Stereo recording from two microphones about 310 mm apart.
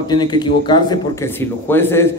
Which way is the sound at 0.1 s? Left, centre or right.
Centre.